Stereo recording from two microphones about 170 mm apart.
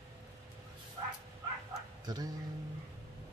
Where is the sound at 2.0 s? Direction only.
25° right (ahead or behind).